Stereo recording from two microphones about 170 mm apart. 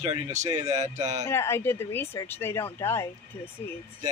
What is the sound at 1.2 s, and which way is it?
Speech, 15° left (ahead or behind).